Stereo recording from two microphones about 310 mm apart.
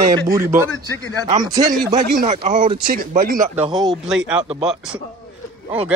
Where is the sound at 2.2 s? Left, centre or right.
Right.